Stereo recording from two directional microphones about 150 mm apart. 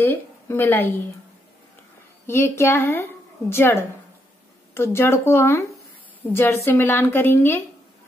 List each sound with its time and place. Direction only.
0.0 s a woman's voice: 15° left (ahead or behind)
2.2 s a woman's voice: 15° left (ahead or behind)